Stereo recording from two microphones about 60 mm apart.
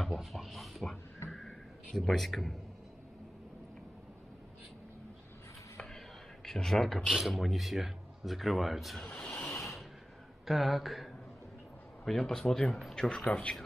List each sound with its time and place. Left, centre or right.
0.0 s speech: centre
1.3 s a sound: centre
6.4 s speech: centre
7.1 s speech: centre
9.2 s a sound: centre
10.4 s speech: centre
13.3 s speech: left